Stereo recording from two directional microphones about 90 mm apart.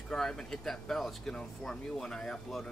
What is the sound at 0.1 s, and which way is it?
Speech, 5° left (ahead or behind).